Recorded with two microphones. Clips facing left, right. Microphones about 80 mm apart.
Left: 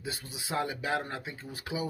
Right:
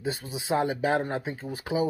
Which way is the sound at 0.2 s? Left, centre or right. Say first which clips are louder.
Right 6 dB; right.